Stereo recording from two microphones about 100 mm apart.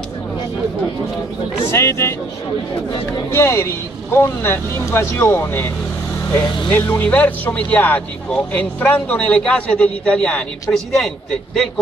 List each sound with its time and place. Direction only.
1.7 s speech: 30° left (ahead or behind)
3.3 s speech: 25° left (ahead or behind)
6.7 s speech: 15° left (ahead or behind)